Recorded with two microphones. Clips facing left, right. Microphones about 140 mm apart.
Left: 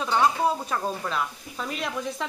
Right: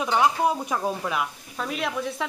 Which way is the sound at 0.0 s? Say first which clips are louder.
Right 1 dB; 15° right (ahead or behind).